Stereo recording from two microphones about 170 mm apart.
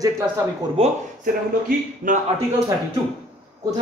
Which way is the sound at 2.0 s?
50° right (ahead or behind).